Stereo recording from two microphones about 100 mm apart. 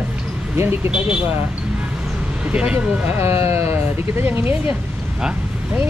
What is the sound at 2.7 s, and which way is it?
Speech, 25° right (ahead or behind).